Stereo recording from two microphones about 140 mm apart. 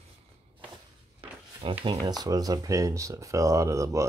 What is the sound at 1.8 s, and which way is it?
Speech, 30° right (ahead or behind).